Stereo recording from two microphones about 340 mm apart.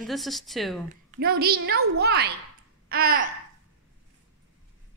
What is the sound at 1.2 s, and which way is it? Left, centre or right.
A woman's voice, right.